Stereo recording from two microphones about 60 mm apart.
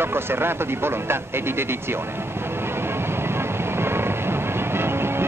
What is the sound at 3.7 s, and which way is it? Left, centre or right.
Music, right.